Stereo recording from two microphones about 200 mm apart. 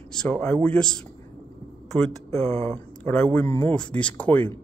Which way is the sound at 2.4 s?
30° right (ahead or behind).